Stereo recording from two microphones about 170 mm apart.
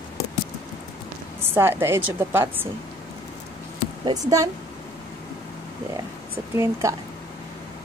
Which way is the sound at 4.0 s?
20° right (ahead or behind).